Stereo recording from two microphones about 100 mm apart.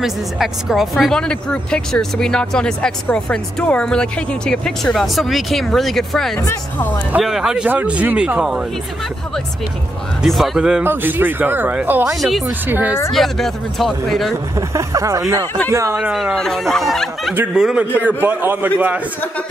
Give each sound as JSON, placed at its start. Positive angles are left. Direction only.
{"t": 0.0, "sound": "a man's voice", "side_deg": -5}
{"t": 10.2, "sound": "speech", "side_deg": 0}
{"t": 10.8, "sound": "speech", "side_deg": -20}
{"t": 12.2, "sound": "speech", "side_deg": 0}
{"t": 12.4, "sound": "speech", "side_deg": -20}
{"t": 13.1, "sound": "speech", "side_deg": 0}
{"t": 14.7, "sound": "speech", "side_deg": -30}
{"t": 16.0, "sound": "speech", "side_deg": -5}
{"t": 18.0, "sound": "a man's voice", "side_deg": -20}